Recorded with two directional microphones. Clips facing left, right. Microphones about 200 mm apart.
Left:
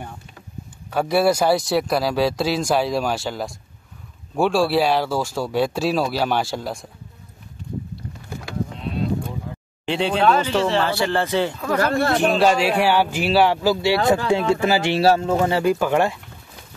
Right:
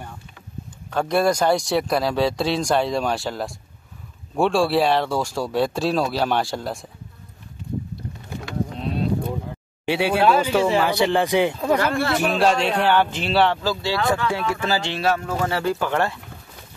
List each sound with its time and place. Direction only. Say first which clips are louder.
0.8 s speech: left 2 dB; 5° left (ahead or behind)
9.8 s speech: even; 10° right (ahead or behind)
11.8 s speech: left 2 dB; 40° left (ahead or behind)
12.4 s speech: left 2 dB; 5° left (ahead or behind)